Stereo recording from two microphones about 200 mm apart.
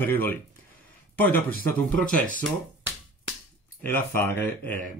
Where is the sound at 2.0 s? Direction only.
40° left (ahead or behind).